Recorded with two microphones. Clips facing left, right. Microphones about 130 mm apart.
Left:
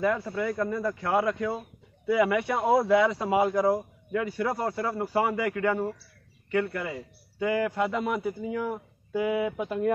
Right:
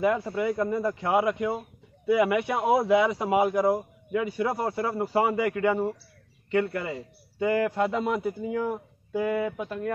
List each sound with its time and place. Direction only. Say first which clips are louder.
0.0 s speech: right 2 dB; 20° right (ahead or behind)
7.4 s speech: right 2 dB; centre (ahead or behind)
9.1 s speech: even; 10° left (ahead or behind)